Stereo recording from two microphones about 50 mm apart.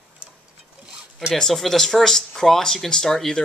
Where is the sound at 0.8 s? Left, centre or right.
Centre.